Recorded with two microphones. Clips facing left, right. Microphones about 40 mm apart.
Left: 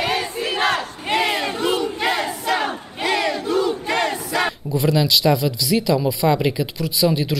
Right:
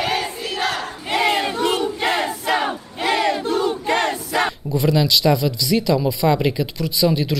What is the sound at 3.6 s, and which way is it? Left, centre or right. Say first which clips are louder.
Crowd: right 1 dB; right.